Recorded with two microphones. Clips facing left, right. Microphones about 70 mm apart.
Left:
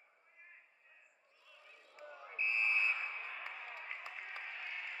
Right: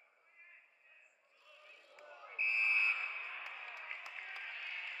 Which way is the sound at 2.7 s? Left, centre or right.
Centre.